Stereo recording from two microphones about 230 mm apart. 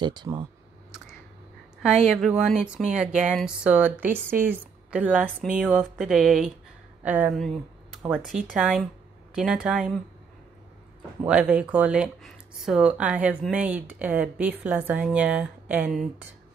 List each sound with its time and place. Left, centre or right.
0.0 s speech: centre
1.8 s speech: centre
11.2 s speech: centre